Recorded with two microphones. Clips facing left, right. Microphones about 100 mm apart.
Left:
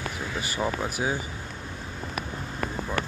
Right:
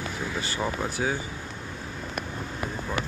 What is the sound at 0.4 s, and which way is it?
Speech, 15° left (ahead or behind).